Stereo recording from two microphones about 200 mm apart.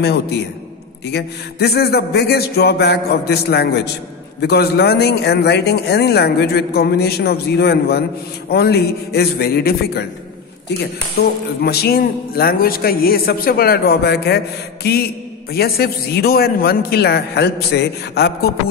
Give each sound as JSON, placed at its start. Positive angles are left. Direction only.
{"t": 0.0, "sound": "a man's voice", "side_deg": 55}